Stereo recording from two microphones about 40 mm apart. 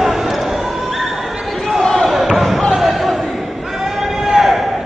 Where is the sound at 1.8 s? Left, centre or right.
Left.